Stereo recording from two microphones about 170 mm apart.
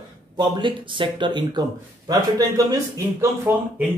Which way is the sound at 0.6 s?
30° right (ahead or behind).